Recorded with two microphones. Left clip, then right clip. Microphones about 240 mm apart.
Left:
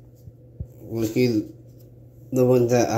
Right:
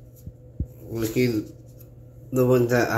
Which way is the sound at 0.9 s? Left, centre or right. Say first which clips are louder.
Left 2 dB; centre.